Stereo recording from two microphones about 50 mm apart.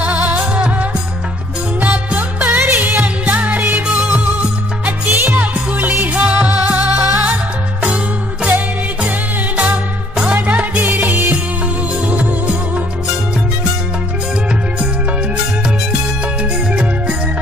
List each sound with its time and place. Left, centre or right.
0.0 s music: right
9.6 s music: right
10.8 s music: right